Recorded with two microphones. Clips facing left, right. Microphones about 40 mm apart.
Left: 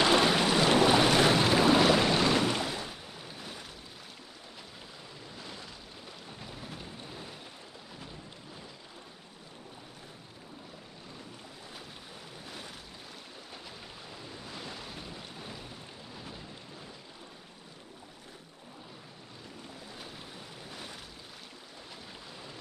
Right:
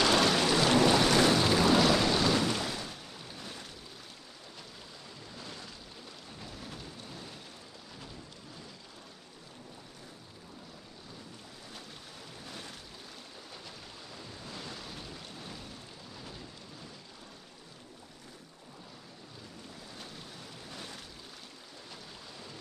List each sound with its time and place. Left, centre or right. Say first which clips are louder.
0.0 s boat: left 1 dB; centre
5.3 s boat: even; centre
6.4 s a sound: left 1 dB; centre
12.4 s boat: even; centre
14.1 s waves: even; centre
20.6 s boat: even; centre